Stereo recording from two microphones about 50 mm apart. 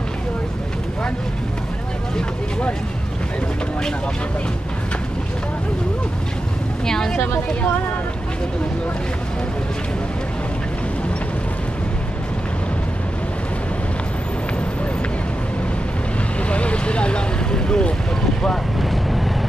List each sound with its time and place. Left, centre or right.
6.9 s vehicle: centre
16.4 s vehicle: left
18.8 s vehicle: centre